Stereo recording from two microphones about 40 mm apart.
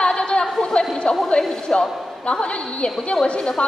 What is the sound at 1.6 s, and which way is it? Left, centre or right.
A woman's voice, left.